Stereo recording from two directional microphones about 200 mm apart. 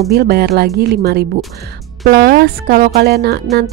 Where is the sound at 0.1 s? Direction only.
50° right (ahead or behind).